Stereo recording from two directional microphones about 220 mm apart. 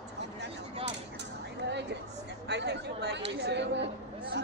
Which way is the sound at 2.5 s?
50° right (ahead or behind).